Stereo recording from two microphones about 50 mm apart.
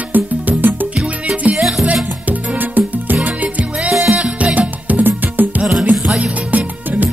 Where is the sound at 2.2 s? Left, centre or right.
Right.